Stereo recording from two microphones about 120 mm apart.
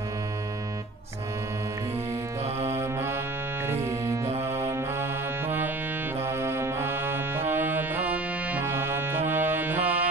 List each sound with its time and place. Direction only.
2.8 s music: 20° right (ahead or behind)
6.2 s music: 20° right (ahead or behind)